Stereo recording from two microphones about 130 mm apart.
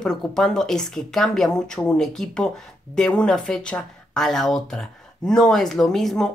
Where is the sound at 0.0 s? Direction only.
5° left (ahead or behind).